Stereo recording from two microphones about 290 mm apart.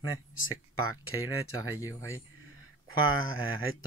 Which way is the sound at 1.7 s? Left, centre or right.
Centre.